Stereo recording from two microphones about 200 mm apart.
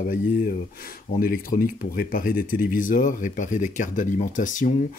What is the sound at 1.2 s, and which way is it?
Speech, 45° left (ahead or behind).